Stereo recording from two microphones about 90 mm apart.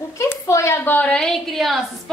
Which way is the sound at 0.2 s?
30° left (ahead or behind).